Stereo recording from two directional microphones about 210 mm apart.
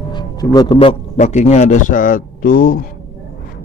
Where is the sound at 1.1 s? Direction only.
35° left (ahead or behind).